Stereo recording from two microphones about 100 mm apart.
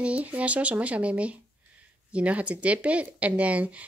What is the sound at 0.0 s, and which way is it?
Speech, 15° right (ahead or behind).